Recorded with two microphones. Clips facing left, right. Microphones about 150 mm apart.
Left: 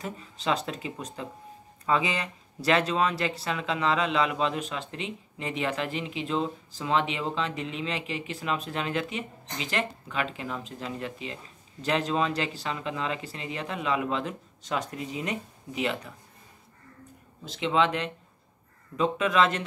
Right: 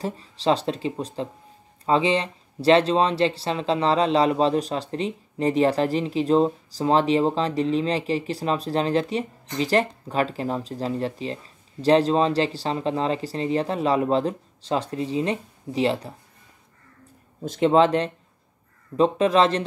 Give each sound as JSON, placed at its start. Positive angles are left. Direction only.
{"t": 0.0, "sound": "speech", "side_deg": -35}
{"t": 17.4, "sound": "speech", "side_deg": -45}